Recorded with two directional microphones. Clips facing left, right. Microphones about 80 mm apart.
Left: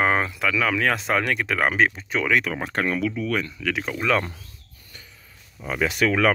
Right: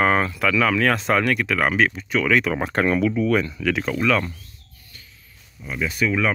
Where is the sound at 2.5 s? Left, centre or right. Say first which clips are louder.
Right 4 dB; right.